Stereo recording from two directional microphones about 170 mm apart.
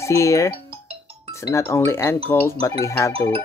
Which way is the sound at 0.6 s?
35° right (ahead or behind).